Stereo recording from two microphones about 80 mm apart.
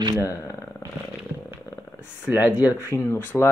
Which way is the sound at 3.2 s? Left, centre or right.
Left.